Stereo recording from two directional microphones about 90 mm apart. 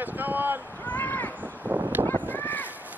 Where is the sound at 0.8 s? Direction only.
20° left (ahead or behind).